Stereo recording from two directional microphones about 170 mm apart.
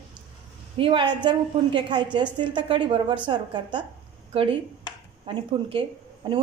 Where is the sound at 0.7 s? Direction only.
30° right (ahead or behind).